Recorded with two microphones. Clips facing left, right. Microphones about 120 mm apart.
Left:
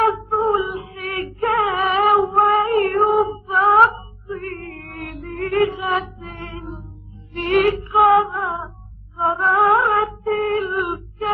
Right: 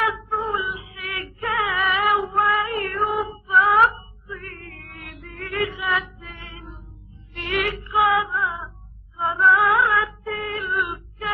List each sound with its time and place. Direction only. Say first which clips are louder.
0.0 s female singing: left 7 dB; 30° left (ahead or behind)
2.5 s female singing: left 8 dB; 45° left (ahead or behind)
3.1 s female singing: left 8 dB; 30° left (ahead or behind)
3.4 s a sound: left 1 dB; 35° left (ahead or behind)
5.8 s music: left 4 dB; 40° left (ahead or behind)
9.6 s female singing: left 4 dB; 35° left (ahead or behind)